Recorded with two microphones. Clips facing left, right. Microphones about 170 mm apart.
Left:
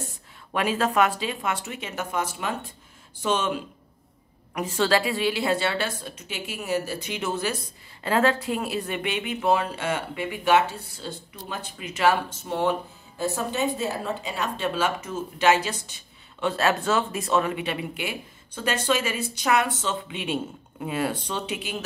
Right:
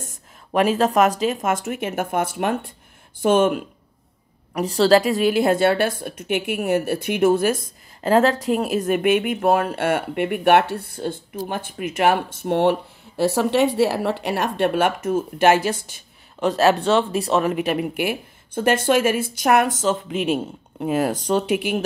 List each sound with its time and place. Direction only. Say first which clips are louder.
0.5 s a woman's voice: right 7 dB; 35° right (ahead or behind); by 3.6 s 50° right (ahead or behind)
4.6 s a woman's voice: right 7 dB; 35° right (ahead or behind)
16.3 s speech: right 6 dB; 35° right (ahead or behind)
17.6 s a woman's voice: right 8 dB; 50° right (ahead or behind)
20.8 s a woman's voice: right 6 dB; 45° right (ahead or behind)